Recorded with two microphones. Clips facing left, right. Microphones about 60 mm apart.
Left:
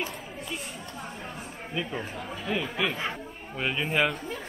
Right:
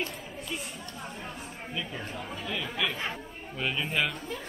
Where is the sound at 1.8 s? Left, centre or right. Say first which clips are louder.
Left 4 dB; left.